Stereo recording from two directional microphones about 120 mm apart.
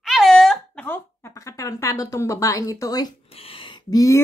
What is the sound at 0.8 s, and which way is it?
Speech, 20° left (ahead or behind).